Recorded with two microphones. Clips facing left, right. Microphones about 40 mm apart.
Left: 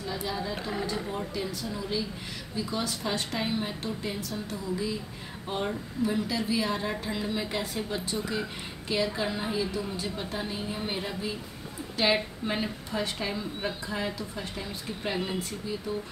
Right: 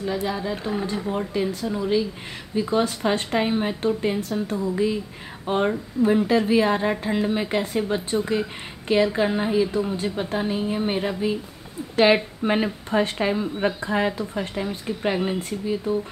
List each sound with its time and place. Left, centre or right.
0.3 s a woman's voice: right